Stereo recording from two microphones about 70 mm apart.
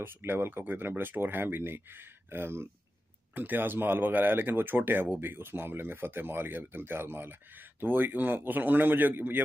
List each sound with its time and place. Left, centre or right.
0.0 s speech: right